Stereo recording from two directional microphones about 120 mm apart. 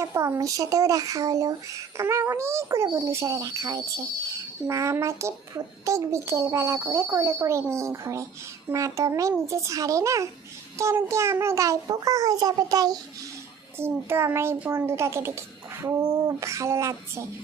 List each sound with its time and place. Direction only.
0.0 s speech: 25° right (ahead or behind)
13.7 s speech: 20° right (ahead or behind)